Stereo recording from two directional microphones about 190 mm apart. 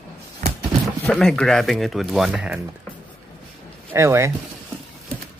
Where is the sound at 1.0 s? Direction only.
5° left (ahead or behind).